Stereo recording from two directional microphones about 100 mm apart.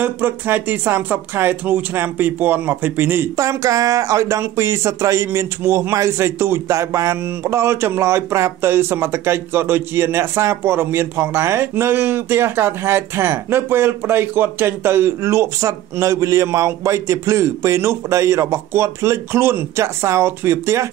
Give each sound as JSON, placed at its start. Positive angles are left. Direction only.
{"t": 0.0, "sound": "speech", "side_deg": -20}
{"t": 3.3, "sound": "speech", "side_deg": -35}